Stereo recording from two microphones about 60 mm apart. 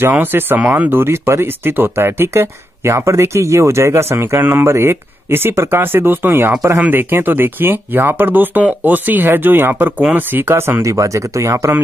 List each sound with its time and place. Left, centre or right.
0.1 s speech: right
4.4 s speech: right
10.9 s speech: right